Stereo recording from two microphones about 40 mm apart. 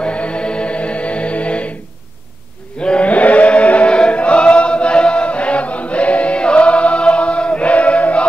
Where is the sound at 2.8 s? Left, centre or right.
Left.